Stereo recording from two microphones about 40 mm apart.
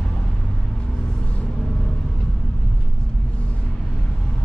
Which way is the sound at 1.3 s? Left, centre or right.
Left.